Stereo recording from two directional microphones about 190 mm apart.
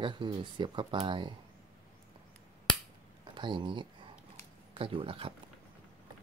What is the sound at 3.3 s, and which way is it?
Speech, 25° right (ahead or behind).